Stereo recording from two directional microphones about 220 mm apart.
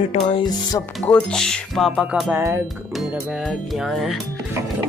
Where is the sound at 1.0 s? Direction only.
5° left (ahead or behind).